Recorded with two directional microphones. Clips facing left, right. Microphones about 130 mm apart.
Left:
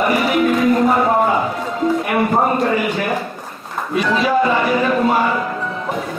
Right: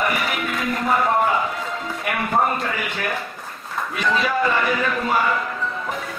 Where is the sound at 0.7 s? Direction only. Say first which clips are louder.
Left 5 dB; 30° left (ahead or behind).